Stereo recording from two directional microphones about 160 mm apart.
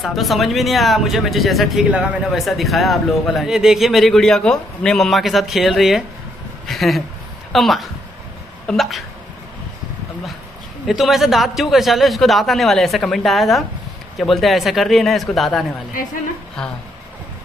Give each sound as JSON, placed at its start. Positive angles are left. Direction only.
{"t": 0.0, "sound": "speech", "side_deg": 0}
{"t": 6.6, "sound": "a sound", "side_deg": 0}
{"t": 7.5, "sound": "speech", "side_deg": 0}
{"t": 10.9, "sound": "speech", "side_deg": 0}